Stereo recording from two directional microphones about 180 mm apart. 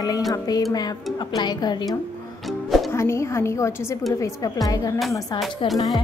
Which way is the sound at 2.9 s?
15° left (ahead or behind).